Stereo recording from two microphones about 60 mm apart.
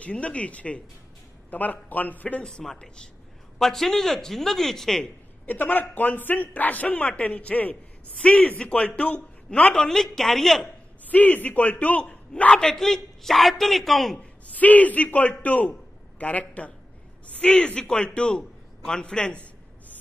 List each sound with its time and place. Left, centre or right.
0.0 s speech: left
2.4 s a man's voice: centre
5.5 s a man's voice: left; by 10.7 s centre
11.1 s a man's voice: left; by 14.1 s centre
14.1 s a man's voice: left